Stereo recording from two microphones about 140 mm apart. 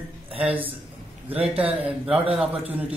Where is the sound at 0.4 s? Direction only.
10° right (ahead or behind).